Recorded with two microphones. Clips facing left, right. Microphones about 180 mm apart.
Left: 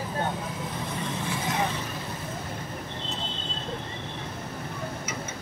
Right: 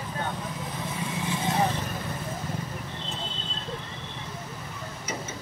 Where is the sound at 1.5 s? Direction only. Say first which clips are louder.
Right 3 dB; 30° right (ahead or behind).